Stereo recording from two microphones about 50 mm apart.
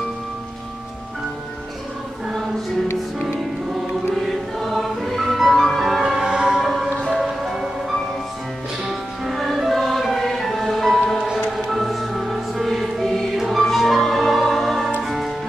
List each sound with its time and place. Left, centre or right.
4.2 s music: centre
6.1 s music: centre
6.6 s music: centre
8.8 s music: centre